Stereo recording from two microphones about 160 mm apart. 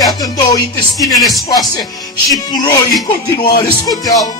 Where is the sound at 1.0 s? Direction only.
Centre (ahead or behind).